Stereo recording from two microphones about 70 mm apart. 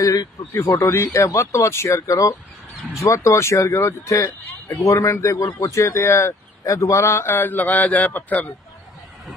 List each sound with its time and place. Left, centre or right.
0.0 s speech: left